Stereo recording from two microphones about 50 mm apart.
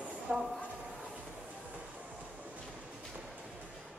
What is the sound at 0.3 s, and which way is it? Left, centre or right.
Speech, right.